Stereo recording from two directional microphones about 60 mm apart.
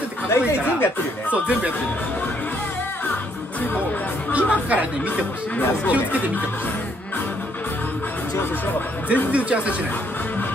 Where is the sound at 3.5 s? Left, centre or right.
Left.